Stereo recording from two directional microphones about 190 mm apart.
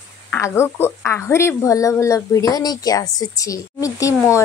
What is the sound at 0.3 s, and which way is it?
A woman's voice, 15° left (ahead or behind).